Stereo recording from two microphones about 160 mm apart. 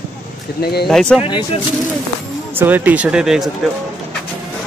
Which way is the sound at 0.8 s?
Centre (ahead or behind).